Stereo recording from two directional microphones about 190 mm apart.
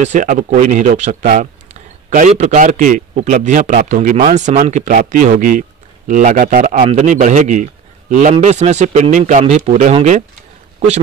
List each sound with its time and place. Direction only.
0.0 s speech: 40° right (ahead or behind)